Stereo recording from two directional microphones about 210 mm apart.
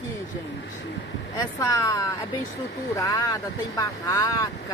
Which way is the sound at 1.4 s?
15° left (ahead or behind).